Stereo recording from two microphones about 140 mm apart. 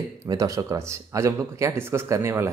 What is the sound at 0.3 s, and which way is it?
Speech, 25° right (ahead or behind).